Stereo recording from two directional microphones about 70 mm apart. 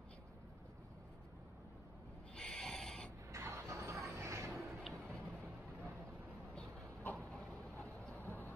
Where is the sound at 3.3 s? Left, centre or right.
Right.